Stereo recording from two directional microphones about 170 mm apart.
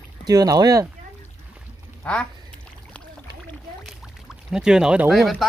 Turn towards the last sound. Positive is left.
turn(degrees=0)  # may be behind; listen again after turning